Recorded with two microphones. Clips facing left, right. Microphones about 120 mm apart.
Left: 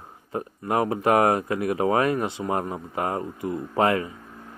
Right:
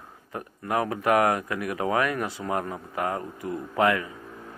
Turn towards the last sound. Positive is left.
turn(degrees=30)  # may be behind; listen again after turning